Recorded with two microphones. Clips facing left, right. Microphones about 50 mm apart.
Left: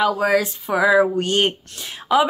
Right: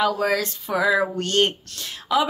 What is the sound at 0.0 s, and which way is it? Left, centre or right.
A woman's voice, centre.